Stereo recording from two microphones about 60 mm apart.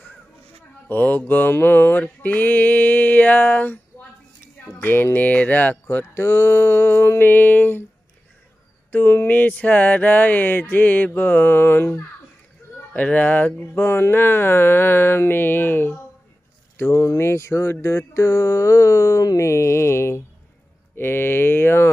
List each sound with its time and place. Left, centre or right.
0.8 s music: left
4.6 s speech: left
8.9 s speech: left
12.7 s speech: left
13.8 s speech: left
17.2 s speech: left